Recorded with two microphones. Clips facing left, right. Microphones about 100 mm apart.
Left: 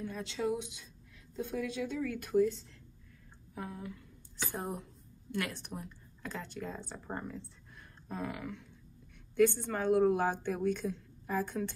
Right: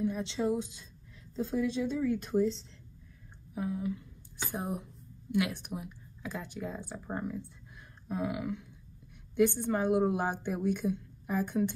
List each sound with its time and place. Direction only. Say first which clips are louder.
0.0 s speech: right 4 dB; 20° right (ahead or behind)
0.6 s a woman's voice: right 5 dB; 35° right (ahead or behind)
3.5 s a woman's voice: right 8 dB; 15° right (ahead or behind)